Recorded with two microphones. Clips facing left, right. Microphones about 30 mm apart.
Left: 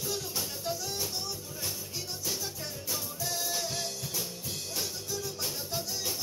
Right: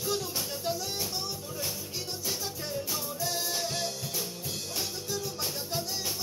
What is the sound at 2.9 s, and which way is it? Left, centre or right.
Music, centre.